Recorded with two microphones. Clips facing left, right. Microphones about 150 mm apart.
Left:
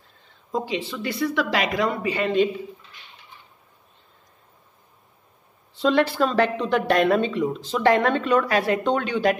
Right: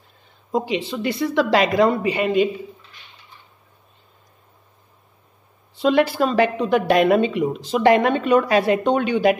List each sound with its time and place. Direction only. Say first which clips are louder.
0.5 s speech: right 4 dB; 15° right (ahead or behind); by 2.0 s 30° right (ahead or behind)
2.0 s speech: right 2 dB; 15° right (ahead or behind)
5.8 s speech: right 2 dB; 10° right (ahead or behind)